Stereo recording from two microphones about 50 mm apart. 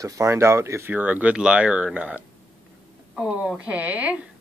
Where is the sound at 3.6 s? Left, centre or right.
Right.